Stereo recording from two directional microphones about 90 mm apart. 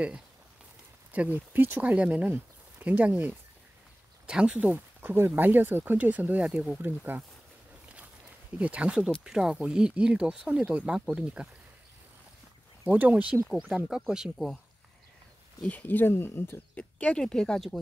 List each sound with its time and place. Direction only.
1.1 s speech: 20° right (ahead or behind)
8.5 s speech: 15° right (ahead or behind)
12.8 s speech: 20° right (ahead or behind); by 14.6 s 5° right (ahead or behind)
15.7 s speech: 20° left (ahead or behind)
16.7 s speech: 15° left (ahead or behind)